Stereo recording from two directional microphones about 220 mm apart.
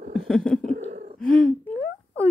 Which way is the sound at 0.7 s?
30° right (ahead or behind).